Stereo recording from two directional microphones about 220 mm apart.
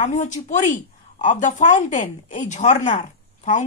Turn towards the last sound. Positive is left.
turn(degrees=35)  # may be behind; listen again after turning